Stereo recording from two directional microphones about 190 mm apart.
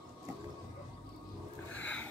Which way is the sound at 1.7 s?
10° left (ahead or behind).